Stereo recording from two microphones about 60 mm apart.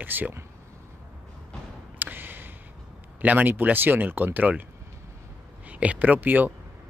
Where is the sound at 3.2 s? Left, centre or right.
Right.